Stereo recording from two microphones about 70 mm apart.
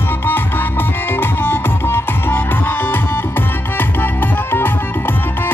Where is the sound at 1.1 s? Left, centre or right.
Left.